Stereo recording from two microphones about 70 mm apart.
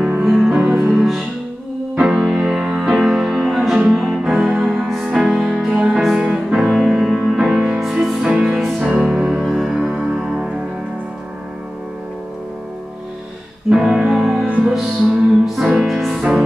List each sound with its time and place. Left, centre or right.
0.2 s music: centre
0.9 s music: centre
13.7 s music: centre